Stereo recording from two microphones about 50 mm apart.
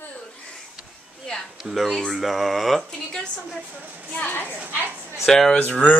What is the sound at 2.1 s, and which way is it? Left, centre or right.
Speech, centre.